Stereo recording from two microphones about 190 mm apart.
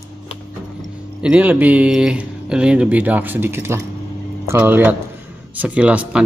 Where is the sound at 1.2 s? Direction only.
5° right (ahead or behind).